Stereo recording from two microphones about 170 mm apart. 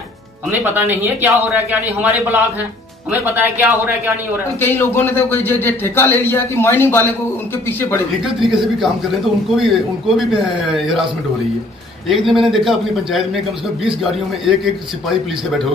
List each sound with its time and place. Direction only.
0.5 s speech: 10° right (ahead or behind)
3.3 s speech: 10° right (ahead or behind)
4.6 s a man's voice: 15° left (ahead or behind)
8.5 s a man's voice: centre (ahead or behind)
12.3 s a man's voice: centre (ahead or behind)
14.4 s a man's voice: centre (ahead or behind)